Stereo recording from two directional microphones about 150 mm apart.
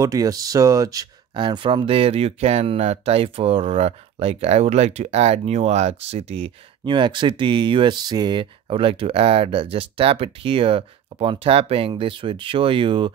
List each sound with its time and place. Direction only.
0.0 s speech: 25° right (ahead or behind)